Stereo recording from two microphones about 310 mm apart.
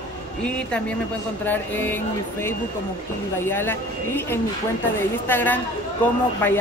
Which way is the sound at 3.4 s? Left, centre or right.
Centre.